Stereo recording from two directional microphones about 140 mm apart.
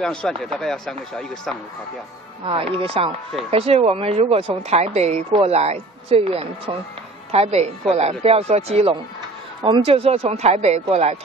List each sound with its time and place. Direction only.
0.0 s speech: 5° left (ahead or behind)
2.4 s a woman's voice: 40° right (ahead or behind)